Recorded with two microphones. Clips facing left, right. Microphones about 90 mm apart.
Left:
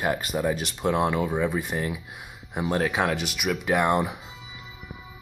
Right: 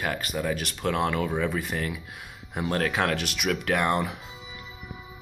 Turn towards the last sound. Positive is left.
turn(degrees=15)  # may be behind; listen again after turning